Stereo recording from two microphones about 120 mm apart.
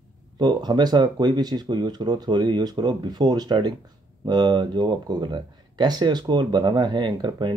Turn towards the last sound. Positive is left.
turn(degrees=-40)  # may be behind; listen again after turning